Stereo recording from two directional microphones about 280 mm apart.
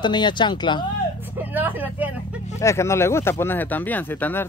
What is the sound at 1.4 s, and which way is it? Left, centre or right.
Vehicle, centre.